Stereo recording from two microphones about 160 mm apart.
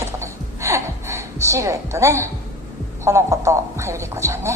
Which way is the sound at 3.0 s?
15° right (ahead or behind).